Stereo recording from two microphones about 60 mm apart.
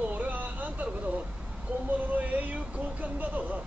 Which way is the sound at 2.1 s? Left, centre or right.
Right.